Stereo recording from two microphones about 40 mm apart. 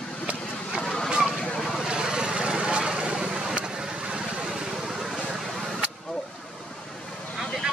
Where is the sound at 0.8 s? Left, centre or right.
Centre.